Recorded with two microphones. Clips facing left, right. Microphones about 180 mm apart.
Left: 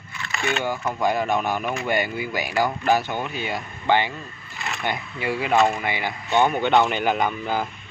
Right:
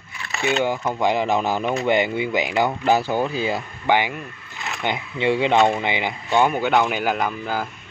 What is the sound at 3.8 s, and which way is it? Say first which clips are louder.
Speech: right 1 dB; 15° right (ahead or behind).